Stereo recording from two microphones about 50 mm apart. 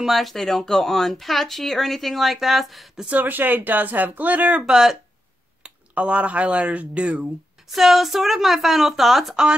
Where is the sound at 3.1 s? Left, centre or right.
Right.